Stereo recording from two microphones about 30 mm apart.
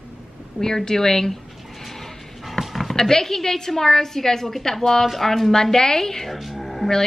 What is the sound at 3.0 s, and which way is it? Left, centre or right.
A woman's voice, centre.